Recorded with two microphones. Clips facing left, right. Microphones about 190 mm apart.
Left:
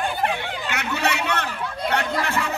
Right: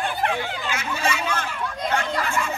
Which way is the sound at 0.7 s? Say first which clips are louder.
Left 2 dB; 70° left (ahead or behind).